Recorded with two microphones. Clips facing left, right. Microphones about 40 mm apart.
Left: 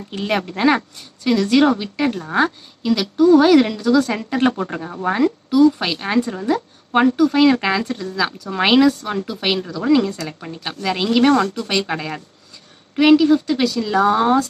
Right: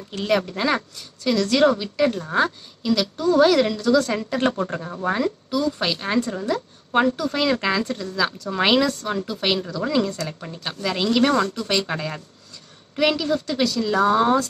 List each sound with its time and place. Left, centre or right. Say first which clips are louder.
0.1 s speech: even; centre